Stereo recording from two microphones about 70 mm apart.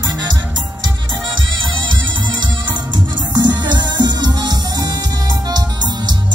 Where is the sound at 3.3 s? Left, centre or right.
Right.